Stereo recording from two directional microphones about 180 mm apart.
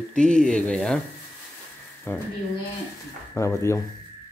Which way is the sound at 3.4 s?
15° left (ahead or behind).